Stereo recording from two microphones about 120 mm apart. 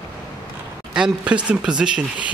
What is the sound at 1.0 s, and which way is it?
Speech, 10° right (ahead or behind).